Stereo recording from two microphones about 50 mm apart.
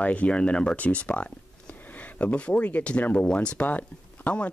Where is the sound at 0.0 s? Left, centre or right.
Left.